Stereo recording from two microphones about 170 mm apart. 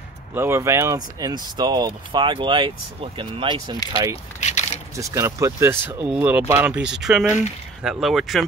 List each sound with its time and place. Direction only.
0.3 s speech: 15° right (ahead or behind)
4.4 s a sound: 45° left (ahead or behind)
4.9 s speech: 15° right (ahead or behind); by 8.5 s centre (ahead or behind)